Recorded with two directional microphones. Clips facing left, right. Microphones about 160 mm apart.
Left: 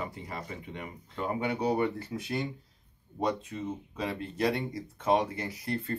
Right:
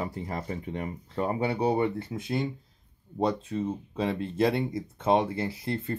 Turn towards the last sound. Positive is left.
turn(degrees=-25)  # may be behind; listen again after turning